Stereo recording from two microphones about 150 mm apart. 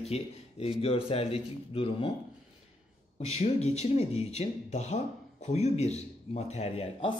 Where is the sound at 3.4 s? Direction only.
45° left (ahead or behind).